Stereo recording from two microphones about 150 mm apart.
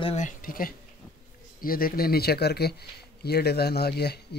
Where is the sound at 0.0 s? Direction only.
45° left (ahead or behind).